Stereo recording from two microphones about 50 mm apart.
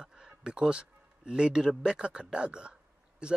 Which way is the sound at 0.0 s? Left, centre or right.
Centre.